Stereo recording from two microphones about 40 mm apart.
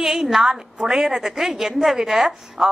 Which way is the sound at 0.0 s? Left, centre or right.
Centre.